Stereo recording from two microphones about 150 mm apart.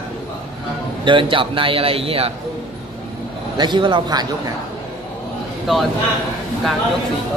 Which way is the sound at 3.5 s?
30° right (ahead or behind).